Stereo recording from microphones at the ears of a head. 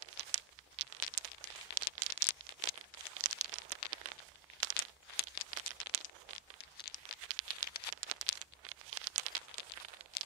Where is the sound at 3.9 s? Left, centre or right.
Right.